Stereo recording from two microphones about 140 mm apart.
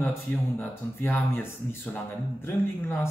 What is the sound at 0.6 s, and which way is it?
Speech, 15° left (ahead or behind).